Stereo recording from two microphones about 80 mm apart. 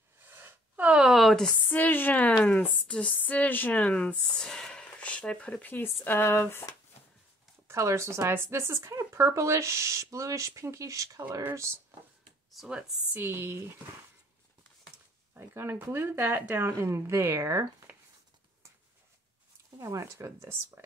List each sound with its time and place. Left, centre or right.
0.2 s a sound: right
0.9 s a sound: centre
1.6 s speech: left
7.6 s speech: right
12.5 s speech: centre
13.1 s speech: right
15.3 s speech: right
19.8 s speech: right